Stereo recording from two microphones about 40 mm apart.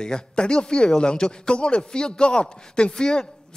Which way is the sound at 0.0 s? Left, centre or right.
Left.